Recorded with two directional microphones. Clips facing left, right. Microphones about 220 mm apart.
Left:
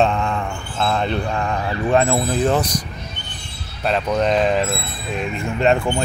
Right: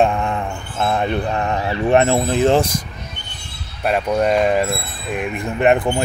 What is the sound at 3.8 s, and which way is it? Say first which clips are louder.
Speech: right 2 dB; 10° right (ahead or behind).